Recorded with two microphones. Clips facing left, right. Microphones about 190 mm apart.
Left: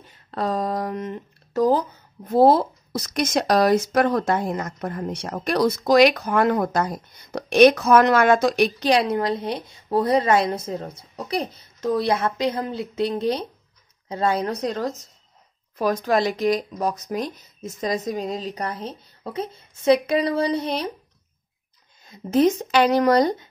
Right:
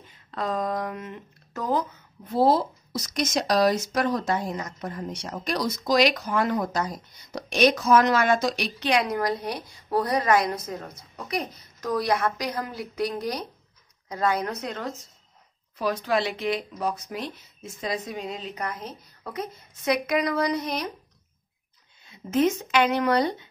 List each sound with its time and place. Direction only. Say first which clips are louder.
0.3 s speech: left 3 dB; 35° left (ahead or behind)
2.2 s a woman's voice: left 5 dB; 50° left (ahead or behind)
8.8 s a woman's voice: right 1 dB; 30° left (ahead or behind)
22.0 s speech: left 4 dB; 40° left (ahead or behind)